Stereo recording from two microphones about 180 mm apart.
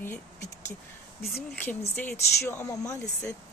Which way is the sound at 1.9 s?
10° left (ahead or behind).